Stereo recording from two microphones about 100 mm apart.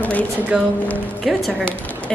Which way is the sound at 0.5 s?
5° right (ahead or behind).